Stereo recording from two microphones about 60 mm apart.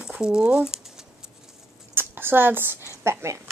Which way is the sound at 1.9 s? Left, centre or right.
Right.